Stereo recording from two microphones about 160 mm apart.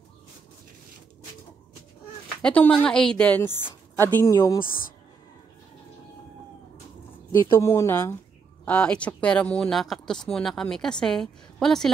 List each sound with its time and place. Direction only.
2.4 s a woman's voice: 10° left (ahead or behind)
7.5 s a woman's voice: 20° left (ahead or behind)